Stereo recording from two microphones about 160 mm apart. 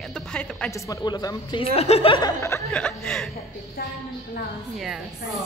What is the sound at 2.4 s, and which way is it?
Speech, 15° left (ahead or behind).